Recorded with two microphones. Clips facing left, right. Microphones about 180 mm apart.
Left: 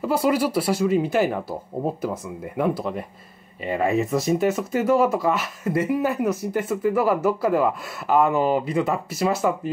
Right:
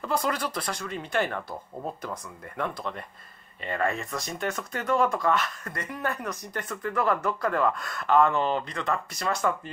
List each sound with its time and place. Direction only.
0.0 s speech: 10° left (ahead or behind)
1.5 s speech: 35° left (ahead or behind)
2.0 s speech: 5° left (ahead or behind)